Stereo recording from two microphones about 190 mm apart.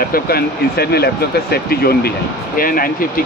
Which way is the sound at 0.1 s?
55° left (ahead or behind).